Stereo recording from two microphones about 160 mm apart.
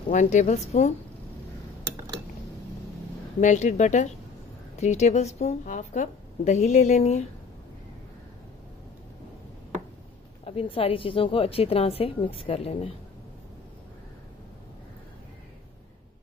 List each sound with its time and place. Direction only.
0.1 s a woman's voice: 50° left (ahead or behind)
3.3 s a woman's voice: 50° left (ahead or behind)
10.4 s a woman's voice: 35° left (ahead or behind)